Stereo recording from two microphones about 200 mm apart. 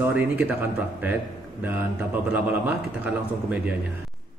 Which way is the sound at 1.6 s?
10° right (ahead or behind).